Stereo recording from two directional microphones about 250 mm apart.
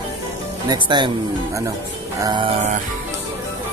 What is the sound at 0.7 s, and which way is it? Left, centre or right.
Speech, centre.